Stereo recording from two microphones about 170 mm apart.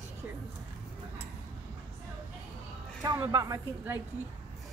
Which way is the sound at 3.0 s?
25° right (ahead or behind).